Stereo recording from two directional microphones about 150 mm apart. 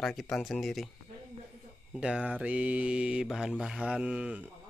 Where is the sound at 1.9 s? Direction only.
5° right (ahead or behind).